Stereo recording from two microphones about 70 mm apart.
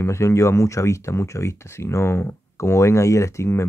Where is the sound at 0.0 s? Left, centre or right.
Left.